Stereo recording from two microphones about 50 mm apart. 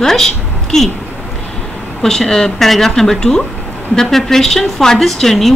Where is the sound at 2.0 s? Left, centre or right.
Centre.